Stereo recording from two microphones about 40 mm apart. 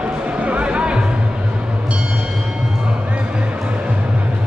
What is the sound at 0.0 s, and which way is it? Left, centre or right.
Music, right.